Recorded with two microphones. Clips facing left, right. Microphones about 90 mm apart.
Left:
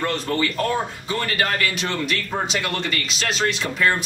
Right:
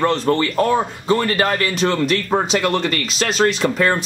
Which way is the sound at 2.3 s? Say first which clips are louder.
Right 7 dB; 50° right (ahead or behind).